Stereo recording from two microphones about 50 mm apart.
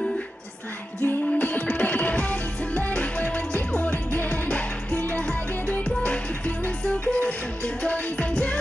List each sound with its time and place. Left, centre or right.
1.0 s music: left